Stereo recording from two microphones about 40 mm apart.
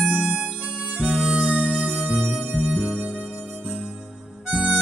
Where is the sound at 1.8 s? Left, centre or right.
Right.